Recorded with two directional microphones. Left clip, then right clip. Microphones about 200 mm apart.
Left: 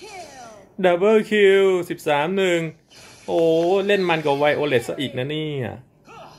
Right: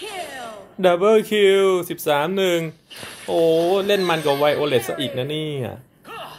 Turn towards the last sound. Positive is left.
turn(degrees=0)  # may be behind; listen again after turning